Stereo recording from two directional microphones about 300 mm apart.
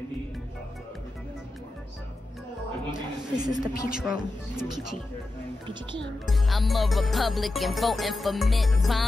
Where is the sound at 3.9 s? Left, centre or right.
Centre.